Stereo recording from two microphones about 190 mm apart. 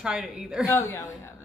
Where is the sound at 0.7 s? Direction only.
15° left (ahead or behind).